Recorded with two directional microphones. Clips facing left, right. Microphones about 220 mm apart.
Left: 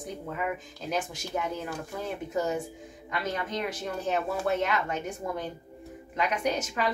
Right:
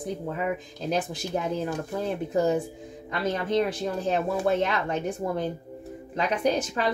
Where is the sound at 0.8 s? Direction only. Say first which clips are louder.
Right 4 dB; 35° right (ahead or behind).